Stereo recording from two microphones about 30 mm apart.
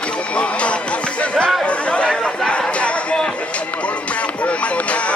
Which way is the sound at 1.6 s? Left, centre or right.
Left.